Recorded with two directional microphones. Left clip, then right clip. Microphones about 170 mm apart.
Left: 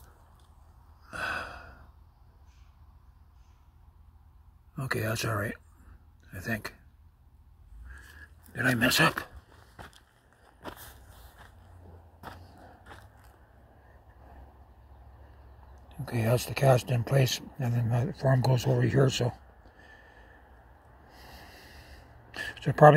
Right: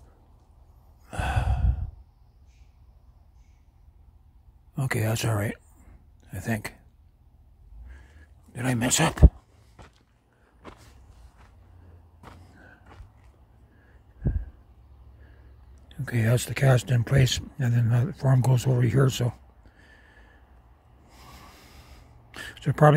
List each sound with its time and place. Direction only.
1.0 s sigh: 35° right (ahead or behind)
4.7 s speech: 40° right (ahead or behind)
8.5 s speech: 25° right (ahead or behind)
10.6 s a sound: 45° left (ahead or behind)
15.9 s speech: 40° right (ahead or behind)
21.1 s a sound: 45° right (ahead or behind)